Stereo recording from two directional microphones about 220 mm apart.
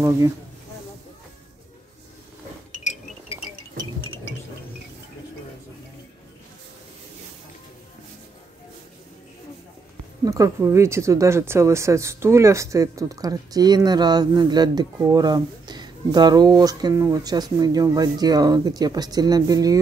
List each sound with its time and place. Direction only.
10.2 s speech: 15° right (ahead or behind)